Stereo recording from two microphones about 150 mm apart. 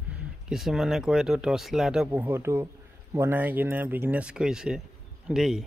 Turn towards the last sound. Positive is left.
turn(degrees=-5)  # may be behind; listen again after turning